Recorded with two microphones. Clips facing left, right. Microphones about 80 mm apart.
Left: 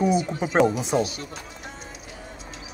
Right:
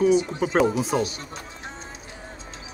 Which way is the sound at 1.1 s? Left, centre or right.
Right.